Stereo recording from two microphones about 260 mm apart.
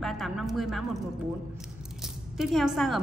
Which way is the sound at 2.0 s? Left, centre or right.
Centre.